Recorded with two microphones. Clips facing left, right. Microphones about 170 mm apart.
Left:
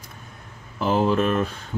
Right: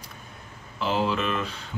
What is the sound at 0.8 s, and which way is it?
Speech, 50° left (ahead or behind).